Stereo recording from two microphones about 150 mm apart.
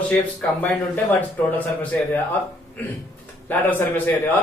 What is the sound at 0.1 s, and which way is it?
Speech, 10° left (ahead or behind).